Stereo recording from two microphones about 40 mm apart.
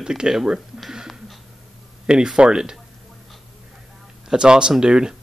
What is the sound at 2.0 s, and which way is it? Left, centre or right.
Speech, right.